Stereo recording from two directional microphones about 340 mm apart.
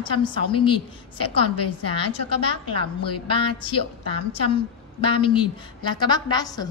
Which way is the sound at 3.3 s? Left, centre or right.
Centre.